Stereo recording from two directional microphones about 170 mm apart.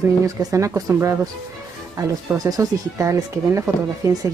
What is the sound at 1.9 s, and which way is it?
Speech, 20° right (ahead or behind).